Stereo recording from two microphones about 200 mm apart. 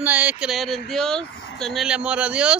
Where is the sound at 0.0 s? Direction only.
10° right (ahead or behind).